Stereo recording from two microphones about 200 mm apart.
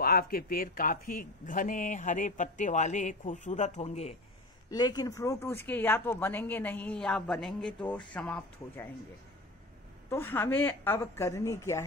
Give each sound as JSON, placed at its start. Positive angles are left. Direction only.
{"t": 0.0, "sound": "speech", "side_deg": 50}
{"t": 4.6, "sound": "a woman's voice", "side_deg": 20}
{"t": 10.0, "sound": "a woman's voice", "side_deg": 10}